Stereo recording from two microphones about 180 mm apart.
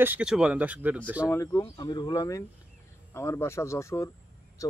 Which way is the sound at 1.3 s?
15° left (ahead or behind).